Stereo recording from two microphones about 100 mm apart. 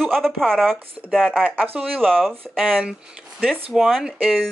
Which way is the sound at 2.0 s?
5° left (ahead or behind).